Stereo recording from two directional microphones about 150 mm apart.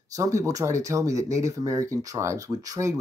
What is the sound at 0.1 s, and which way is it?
Speech, 20° right (ahead or behind).